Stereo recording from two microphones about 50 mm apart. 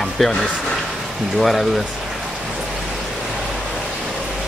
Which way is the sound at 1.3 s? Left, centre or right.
Centre.